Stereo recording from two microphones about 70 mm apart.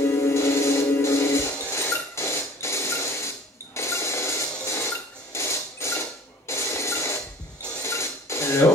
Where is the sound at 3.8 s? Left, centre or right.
Left.